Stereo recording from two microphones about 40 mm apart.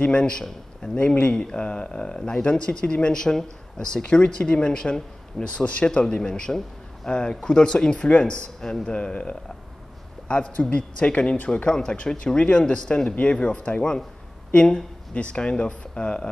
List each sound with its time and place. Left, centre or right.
0.0 s a man's voice: left
1.3 s a man's voice: left
12.4 s speech: left
12.6 s a man's voice: left
13.1 s a man's voice: left